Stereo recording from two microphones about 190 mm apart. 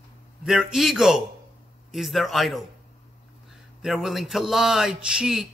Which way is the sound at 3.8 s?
Centre (ahead or behind).